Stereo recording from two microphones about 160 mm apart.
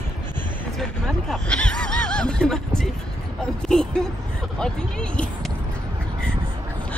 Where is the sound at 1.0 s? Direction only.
5° left (ahead or behind).